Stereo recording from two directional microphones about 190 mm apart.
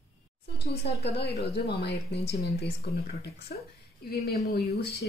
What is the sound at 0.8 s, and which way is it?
Speech, 60° left (ahead or behind).